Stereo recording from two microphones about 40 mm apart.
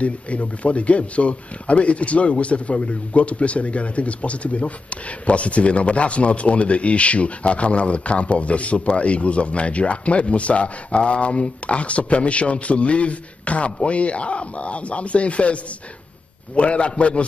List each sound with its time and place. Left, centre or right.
0.0 s a man's voice: left